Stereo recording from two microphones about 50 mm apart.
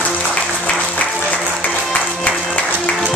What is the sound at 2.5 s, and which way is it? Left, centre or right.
Music, left.